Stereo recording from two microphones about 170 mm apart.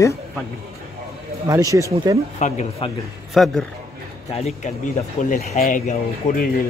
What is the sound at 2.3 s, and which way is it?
Speech, 45° left (ahead or behind).